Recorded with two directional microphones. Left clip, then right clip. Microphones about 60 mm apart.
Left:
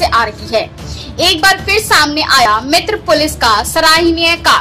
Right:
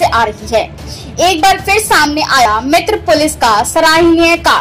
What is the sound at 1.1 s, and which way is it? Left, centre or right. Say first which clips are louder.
Speech: right 1 dB; right.